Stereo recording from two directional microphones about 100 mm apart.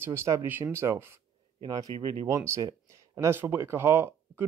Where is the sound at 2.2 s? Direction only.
30° right (ahead or behind).